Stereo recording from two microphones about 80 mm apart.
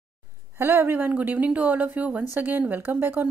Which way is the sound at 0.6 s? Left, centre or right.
Right.